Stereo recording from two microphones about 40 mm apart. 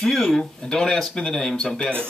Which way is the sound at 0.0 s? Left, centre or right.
Centre.